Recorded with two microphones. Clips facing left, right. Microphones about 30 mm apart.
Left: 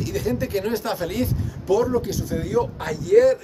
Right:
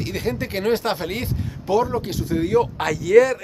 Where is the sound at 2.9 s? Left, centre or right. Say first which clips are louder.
Right 4 dB; right.